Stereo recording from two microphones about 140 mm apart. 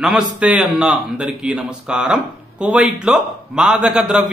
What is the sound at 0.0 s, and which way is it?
A man's voice, 5° right (ahead or behind).